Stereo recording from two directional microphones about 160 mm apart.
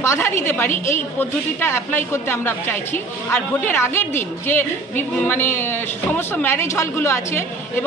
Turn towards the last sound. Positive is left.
turn(degrees=15)  # may be behind; listen again after turning